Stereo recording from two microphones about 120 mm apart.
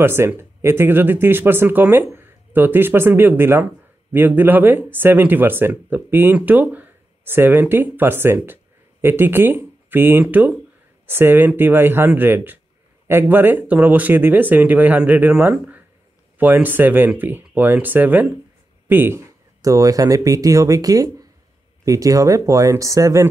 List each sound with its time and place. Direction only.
0.0 s speech: 20° right (ahead or behind)